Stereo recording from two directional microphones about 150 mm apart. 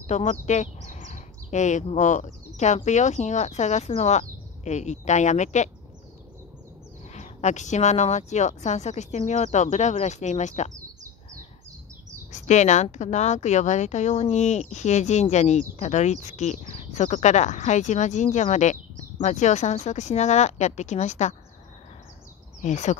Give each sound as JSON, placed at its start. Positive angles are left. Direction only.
{"t": 0.0, "sound": "speech", "side_deg": 50}
{"t": 7.2, "sound": "a woman's voice", "side_deg": 50}
{"t": 12.3, "sound": "a woman's voice", "side_deg": 50}
{"t": 22.6, "sound": "a woman's voice", "side_deg": 50}